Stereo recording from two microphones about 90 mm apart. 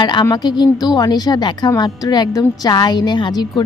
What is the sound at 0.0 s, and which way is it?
A woman's voice, 50° left (ahead or behind).